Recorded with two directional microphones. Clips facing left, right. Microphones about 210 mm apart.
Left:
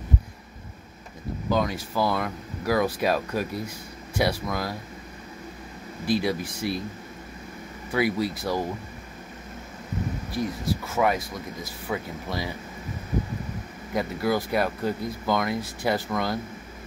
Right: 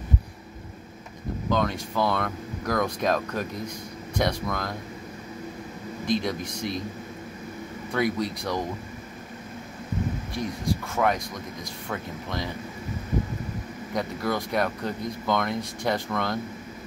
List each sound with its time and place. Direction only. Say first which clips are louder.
1.5 s speech: left 1 dB; 5° left (ahead or behind)
6.0 s speech: left 2 dB; 5° left (ahead or behind)
7.9 s speech: left 1 dB; 5° left (ahead or behind)
10.3 s speech: left 3 dB; 5° left (ahead or behind)
13.9 s speech: left 3 dB; 5° left (ahead or behind)